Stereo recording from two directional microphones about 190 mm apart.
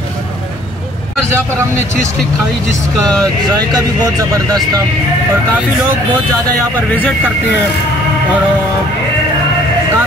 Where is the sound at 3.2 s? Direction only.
20° right (ahead or behind).